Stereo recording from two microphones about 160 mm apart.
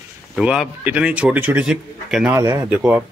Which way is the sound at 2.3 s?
20° right (ahead or behind).